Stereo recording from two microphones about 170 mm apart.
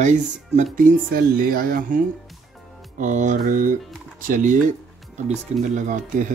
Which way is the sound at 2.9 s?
45° right (ahead or behind).